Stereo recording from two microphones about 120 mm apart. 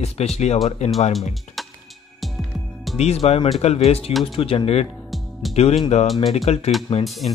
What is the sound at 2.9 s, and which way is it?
Speech, 60° left (ahead or behind).